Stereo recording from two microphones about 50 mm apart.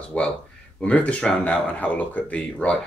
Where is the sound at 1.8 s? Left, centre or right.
Left.